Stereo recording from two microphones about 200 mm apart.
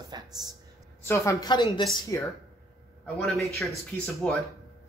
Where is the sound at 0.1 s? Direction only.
20° right (ahead or behind).